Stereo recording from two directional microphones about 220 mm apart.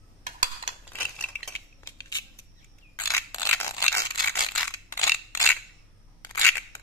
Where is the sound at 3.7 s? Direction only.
15° left (ahead or behind).